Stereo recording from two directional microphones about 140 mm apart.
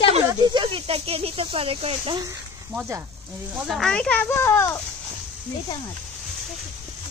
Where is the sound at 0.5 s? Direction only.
35° right (ahead or behind).